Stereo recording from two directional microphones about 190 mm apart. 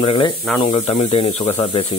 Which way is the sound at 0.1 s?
25° left (ahead or behind).